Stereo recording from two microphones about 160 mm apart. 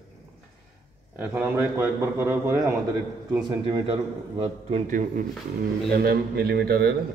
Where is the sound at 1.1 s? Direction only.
10° right (ahead or behind).